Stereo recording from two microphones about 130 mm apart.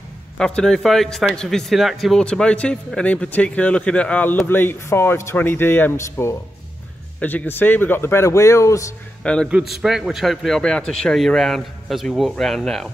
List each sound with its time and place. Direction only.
0.4 s speech: 5° left (ahead or behind); by 8.8 s 25° left (ahead or behind)
9.2 s a man's voice: 10° left (ahead or behind)
9.5 s a man's voice: 5° right (ahead or behind)